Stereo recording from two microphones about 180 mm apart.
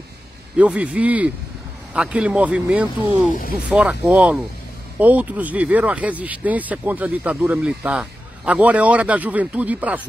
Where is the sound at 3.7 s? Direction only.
5° right (ahead or behind).